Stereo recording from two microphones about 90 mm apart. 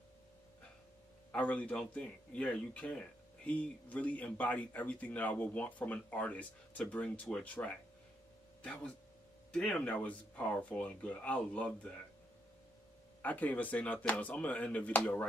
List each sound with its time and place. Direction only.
1.3 s a man's voice: 15° left (ahead or behind)
9.5 s a man's voice: 5° left (ahead or behind)
13.2 s a man's voice: 20° left (ahead or behind)